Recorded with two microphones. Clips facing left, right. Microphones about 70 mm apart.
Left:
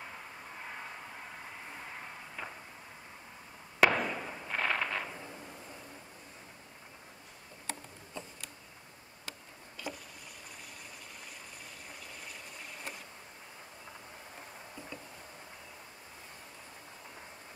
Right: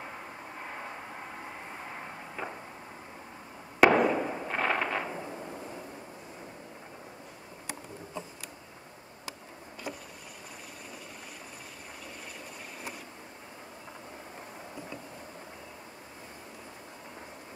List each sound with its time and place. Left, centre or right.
2.4 s a sound: centre
3.8 s fireworks: centre
4.1 s fireworks: right